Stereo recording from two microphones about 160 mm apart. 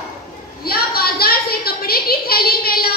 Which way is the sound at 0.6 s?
70° left (ahead or behind).